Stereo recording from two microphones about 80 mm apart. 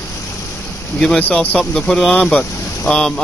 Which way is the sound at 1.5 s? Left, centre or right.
Centre.